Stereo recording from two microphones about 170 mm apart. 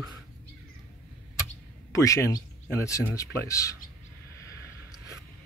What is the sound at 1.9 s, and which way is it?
Speech, 15° left (ahead or behind).